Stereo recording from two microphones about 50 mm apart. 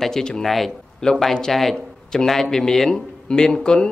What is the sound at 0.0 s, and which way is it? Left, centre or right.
Speech, centre.